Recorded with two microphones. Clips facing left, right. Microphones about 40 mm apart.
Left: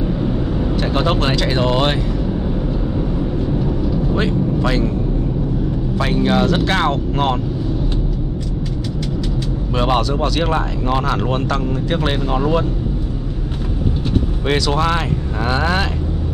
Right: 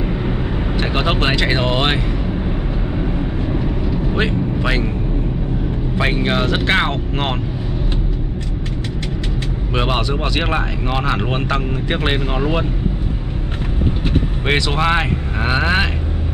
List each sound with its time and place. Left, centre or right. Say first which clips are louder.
0.0 s vehicle: left 2 dB; right
5.9 s speech: left 2 dB; right
9.8 s speech: left 2 dB; right
14.5 s speech: right 1 dB; right